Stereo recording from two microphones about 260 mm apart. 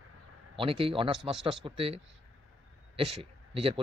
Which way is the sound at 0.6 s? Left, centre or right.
Right.